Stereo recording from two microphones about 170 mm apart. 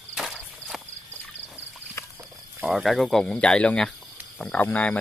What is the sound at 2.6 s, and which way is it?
Speech, centre (ahead or behind).